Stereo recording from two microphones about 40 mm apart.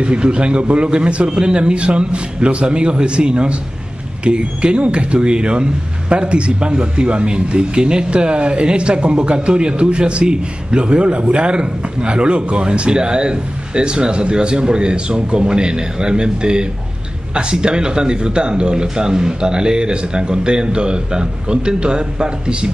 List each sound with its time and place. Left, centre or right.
0.0 s speech: right